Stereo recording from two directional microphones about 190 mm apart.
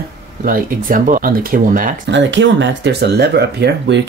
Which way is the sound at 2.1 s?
70° right (ahead or behind).